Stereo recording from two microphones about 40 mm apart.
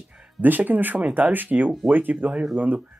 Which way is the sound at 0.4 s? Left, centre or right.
Right.